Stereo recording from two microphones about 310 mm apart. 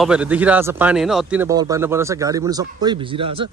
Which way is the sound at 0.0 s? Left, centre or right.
Centre.